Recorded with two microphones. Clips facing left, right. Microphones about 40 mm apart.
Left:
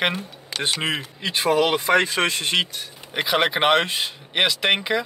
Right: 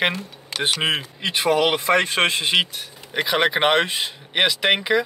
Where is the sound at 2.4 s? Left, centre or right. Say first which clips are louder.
Right 2 dB; centre.